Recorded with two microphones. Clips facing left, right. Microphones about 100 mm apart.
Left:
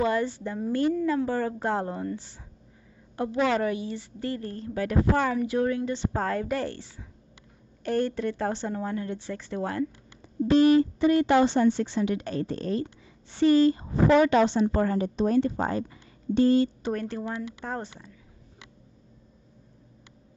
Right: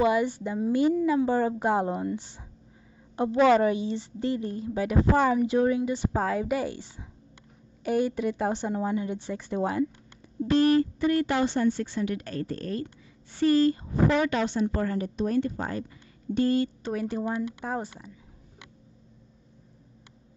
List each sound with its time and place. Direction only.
0.0 s a woman's voice: 15° right (ahead or behind)
10.5 s speech: 20° left (ahead or behind)
16.9 s a woman's voice: 5° right (ahead or behind)